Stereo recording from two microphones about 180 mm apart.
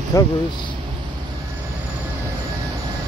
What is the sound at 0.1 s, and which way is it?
Speech, 20° left (ahead or behind).